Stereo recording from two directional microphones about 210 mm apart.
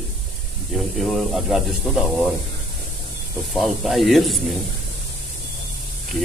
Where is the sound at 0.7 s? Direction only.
Centre (ahead or behind).